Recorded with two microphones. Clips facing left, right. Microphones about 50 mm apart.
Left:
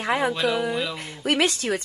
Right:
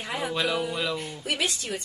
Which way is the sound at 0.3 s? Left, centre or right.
Centre.